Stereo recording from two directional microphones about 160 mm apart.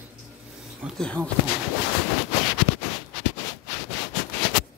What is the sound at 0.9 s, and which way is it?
Speech, 5° left (ahead or behind).